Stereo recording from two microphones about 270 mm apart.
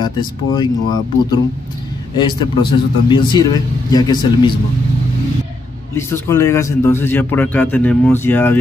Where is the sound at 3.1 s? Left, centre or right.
Centre.